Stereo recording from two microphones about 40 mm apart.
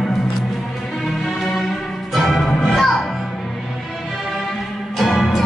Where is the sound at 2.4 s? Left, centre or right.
Centre.